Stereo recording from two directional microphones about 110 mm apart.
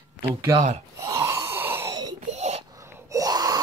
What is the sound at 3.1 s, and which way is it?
Wail, 35° right (ahead or behind).